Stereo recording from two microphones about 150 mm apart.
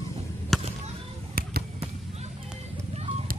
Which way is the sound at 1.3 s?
90° right.